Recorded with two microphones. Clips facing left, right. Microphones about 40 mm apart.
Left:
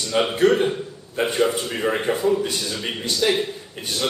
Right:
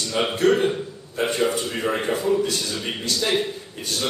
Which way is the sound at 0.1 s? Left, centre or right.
Left.